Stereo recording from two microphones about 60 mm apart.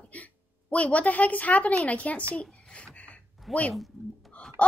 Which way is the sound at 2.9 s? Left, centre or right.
Left.